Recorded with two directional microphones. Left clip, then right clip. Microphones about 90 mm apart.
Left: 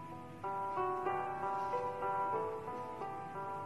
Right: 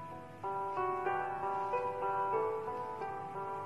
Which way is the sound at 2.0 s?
40° right (ahead or behind).